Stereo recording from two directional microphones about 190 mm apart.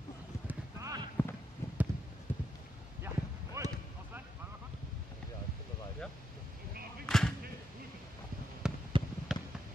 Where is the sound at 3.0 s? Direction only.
15° right (ahead or behind).